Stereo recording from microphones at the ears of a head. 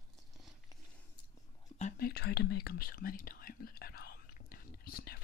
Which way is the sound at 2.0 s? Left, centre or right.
Left.